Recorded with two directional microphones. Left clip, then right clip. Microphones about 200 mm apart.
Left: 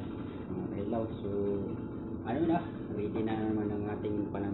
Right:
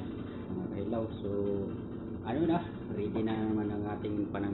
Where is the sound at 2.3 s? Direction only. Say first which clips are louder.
Even; 20° right (ahead or behind).